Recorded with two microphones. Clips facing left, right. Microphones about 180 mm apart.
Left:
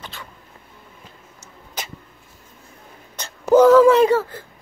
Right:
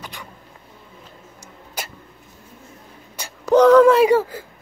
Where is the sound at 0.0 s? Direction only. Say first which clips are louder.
Right 1 dB; 15° right (ahead or behind).